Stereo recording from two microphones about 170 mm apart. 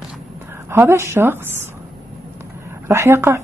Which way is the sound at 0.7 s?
15° right (ahead or behind).